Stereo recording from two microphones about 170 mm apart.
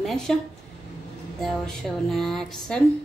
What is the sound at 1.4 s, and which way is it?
A woman's voice, centre (ahead or behind).